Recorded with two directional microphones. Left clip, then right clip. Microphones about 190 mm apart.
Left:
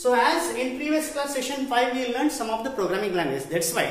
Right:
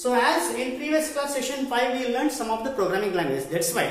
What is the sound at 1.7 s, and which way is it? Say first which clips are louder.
Speech: left 1 dB; 35° left (ahead or behind).